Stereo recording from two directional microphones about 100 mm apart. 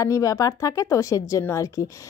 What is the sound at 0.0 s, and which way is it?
A woman's voice, 35° left (ahead or behind).